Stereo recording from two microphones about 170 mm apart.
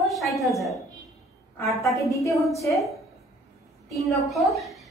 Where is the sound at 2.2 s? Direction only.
20° left (ahead or behind).